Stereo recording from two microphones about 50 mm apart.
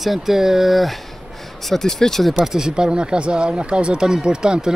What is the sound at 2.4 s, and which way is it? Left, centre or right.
Speech, centre.